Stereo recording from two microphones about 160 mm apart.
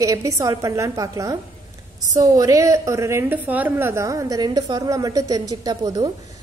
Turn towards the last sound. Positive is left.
turn(degrees=-25)  # may be behind; listen again after turning